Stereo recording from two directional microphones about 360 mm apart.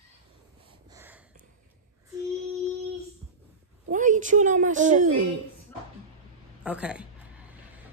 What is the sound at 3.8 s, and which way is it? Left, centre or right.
A woman's voice, right.